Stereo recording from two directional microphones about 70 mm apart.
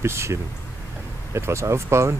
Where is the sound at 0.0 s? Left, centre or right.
Right.